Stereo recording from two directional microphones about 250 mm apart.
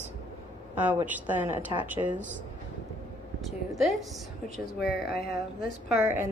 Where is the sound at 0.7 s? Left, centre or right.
Centre.